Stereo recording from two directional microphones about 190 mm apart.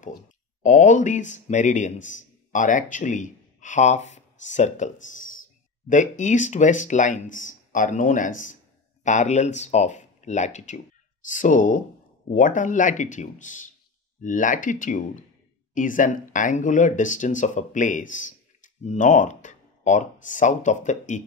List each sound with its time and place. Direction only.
0.6 s speech: 40° left (ahead or behind)